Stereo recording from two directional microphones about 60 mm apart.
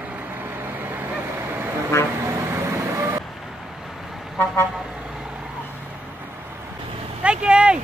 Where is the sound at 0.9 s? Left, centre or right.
Right.